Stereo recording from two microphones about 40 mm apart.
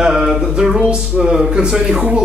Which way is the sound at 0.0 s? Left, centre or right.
Centre.